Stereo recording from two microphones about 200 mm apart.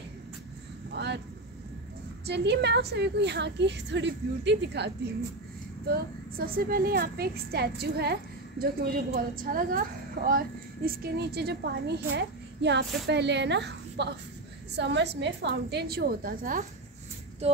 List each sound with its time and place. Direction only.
0.9 s vehicle: 55° right (ahead or behind)
2.2 s a woman's voice: 55° right (ahead or behind)
5.9 s a woman's voice: 45° right (ahead or behind)